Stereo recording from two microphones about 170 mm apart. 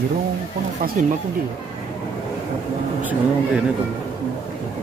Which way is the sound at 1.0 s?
50° right (ahead or behind).